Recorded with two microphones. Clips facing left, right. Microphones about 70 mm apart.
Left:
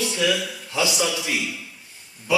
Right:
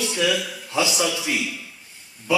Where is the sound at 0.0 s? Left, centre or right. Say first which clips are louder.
Even; centre.